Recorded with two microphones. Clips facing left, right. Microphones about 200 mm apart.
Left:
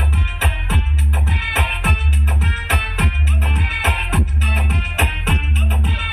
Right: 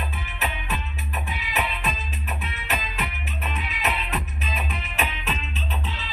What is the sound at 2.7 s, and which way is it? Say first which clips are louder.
Music: left 6 dB; 90° left.